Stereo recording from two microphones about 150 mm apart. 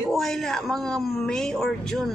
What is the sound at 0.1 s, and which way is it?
Speech, centre (ahead or behind).